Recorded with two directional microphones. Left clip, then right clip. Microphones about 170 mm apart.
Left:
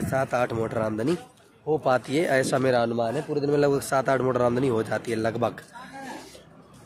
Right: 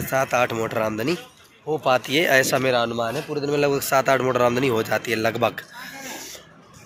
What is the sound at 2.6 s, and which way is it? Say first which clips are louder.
A man's voice: right 2 dB; 30° left (ahead or behind).